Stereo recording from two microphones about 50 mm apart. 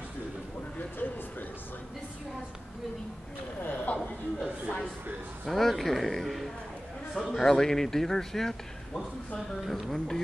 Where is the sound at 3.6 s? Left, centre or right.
Left.